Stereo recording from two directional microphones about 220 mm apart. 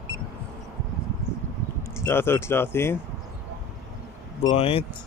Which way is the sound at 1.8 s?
10° left (ahead or behind).